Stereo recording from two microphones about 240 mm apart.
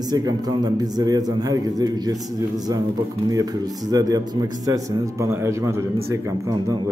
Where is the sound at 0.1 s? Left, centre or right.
Centre.